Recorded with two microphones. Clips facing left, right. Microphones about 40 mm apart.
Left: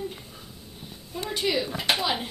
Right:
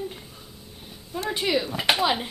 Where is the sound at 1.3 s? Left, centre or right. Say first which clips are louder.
Right 1 dB; centre.